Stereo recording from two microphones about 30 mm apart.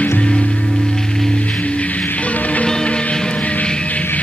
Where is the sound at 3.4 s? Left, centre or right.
Left.